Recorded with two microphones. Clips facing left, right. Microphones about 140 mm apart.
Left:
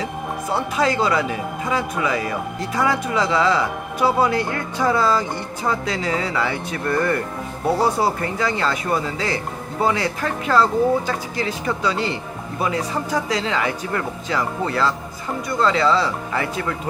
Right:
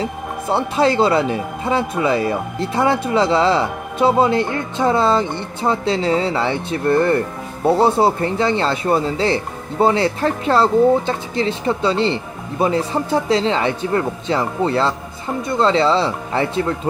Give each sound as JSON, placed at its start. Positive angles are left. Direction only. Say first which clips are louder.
{"t": 0.0, "sound": "speech", "louder": "right 2 dB", "side_deg": -30}